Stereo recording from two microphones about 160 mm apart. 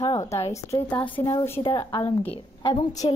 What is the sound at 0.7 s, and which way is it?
Speech, 10° left (ahead or behind).